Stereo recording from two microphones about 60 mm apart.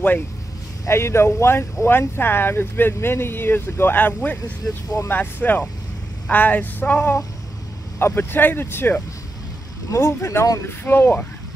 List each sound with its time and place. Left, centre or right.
0.8 s speech: left
8.0 s speech: left
9.8 s speech: left
10.7 s speech: left